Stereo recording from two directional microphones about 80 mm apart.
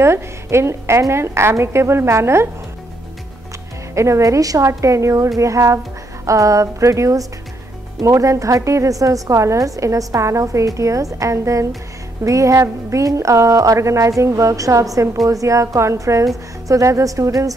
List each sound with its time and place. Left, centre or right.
0.0 s a woman's voice: right
3.9 s a woman's voice: right